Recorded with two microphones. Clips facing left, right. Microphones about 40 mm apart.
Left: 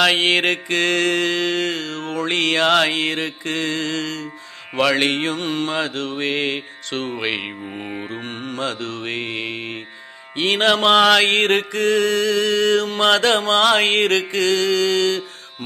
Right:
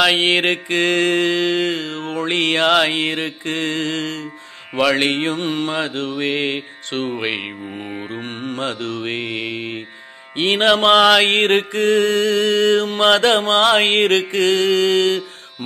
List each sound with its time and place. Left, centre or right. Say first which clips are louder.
0.0 s mantra: right 1 dB; centre
2.6 s mantra: right 1 dB; centre
2.9 s mantra: right 1 dB; right
4.9 s mantra: right 1 dB; centre
7.2 s music: right 1 dB; centre
8.1 s mantra: right 2 dB; right
8.7 s music: right 3 dB; right
9.0 s mantra: even; right
10.8 s mantra: right 1 dB; centre
11.2 s mantra: right 1 dB; right